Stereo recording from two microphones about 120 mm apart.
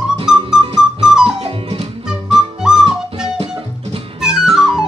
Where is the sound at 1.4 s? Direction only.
55° right (ahead or behind).